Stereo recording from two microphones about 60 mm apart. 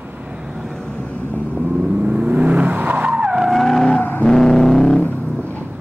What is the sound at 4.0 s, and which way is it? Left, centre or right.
Vehicle, left.